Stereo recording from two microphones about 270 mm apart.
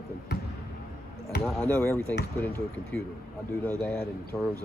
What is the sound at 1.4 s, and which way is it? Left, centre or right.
Speech, centre.